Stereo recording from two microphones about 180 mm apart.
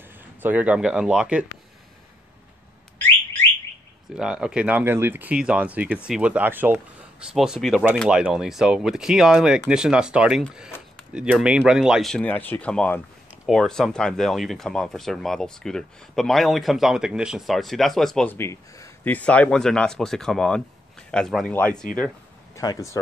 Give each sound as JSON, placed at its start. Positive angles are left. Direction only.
{"t": 0.4, "sound": "speech", "side_deg": -10}
{"t": 4.1, "sound": "speech", "side_deg": -5}
{"t": 22.6, "sound": "speech", "side_deg": 20}